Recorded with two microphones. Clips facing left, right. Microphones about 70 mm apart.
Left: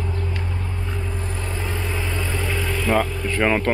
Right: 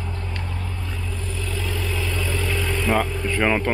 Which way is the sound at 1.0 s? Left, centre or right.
Left.